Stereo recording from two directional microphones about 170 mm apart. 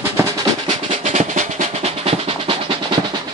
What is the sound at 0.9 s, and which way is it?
Drum roll, 45° right (ahead or behind).